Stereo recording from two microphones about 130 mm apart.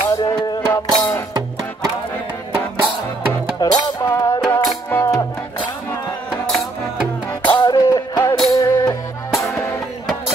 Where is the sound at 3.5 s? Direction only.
35° left (ahead or behind).